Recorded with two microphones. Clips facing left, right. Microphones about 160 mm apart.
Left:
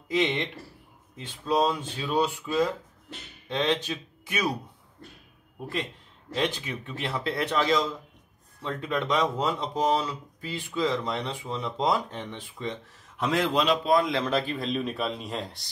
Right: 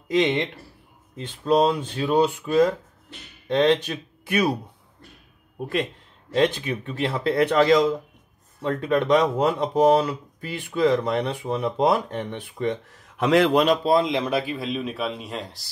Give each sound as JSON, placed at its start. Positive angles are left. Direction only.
{"t": 0.1, "sound": "a man's voice", "side_deg": -70}
{"t": 1.1, "sound": "speech", "side_deg": -60}
{"t": 6.3, "sound": "speech", "side_deg": -60}
{"t": 13.2, "sound": "speech", "side_deg": -70}
{"t": 13.8, "sound": "speech", "side_deg": -30}
{"t": 14.1, "sound": "speech", "side_deg": -10}